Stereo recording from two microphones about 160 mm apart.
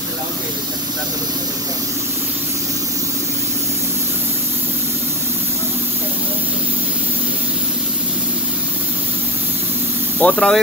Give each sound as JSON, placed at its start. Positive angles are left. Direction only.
{"t": 10.1, "sound": "speech", "side_deg": 5}